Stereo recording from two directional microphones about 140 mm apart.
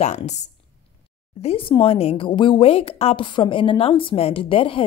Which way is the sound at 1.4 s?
40° left (ahead or behind).